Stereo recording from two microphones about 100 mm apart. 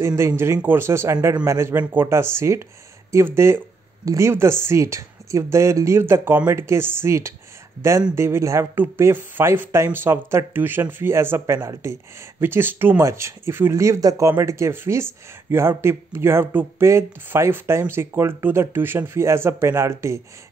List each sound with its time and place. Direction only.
0.0 s speech: 30° right (ahead or behind)